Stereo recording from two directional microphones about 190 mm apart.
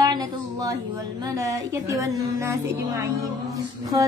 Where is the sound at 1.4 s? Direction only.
15° right (ahead or behind).